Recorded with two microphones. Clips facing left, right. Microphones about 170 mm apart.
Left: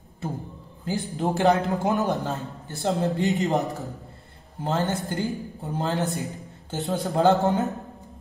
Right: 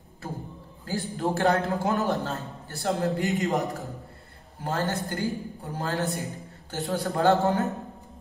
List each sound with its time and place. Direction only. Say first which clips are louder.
0.8 s a man's voice: left 2 dB; 20° left (ahead or behind)
4.6 s a woman's voice: left 3 dB; 20° left (ahead or behind)